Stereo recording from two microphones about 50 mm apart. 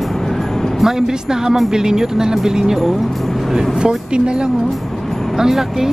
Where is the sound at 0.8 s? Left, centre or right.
Centre.